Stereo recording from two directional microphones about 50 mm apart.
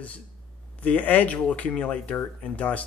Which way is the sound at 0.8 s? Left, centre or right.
Left.